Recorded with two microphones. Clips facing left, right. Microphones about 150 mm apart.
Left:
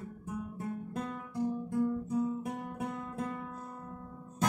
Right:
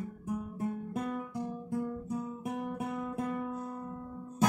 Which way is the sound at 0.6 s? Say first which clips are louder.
Right 3 dB; 15° right (ahead or behind).